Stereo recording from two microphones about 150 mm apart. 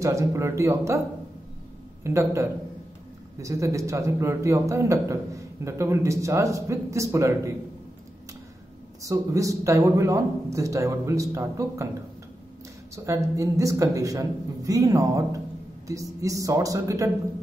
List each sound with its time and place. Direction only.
0.0 s a man's voice: 20° right (ahead or behind)
2.0 s a man's voice: 20° right (ahead or behind)
9.0 s a man's voice: 20° right (ahead or behind)
12.9 s a man's voice: 20° right (ahead or behind)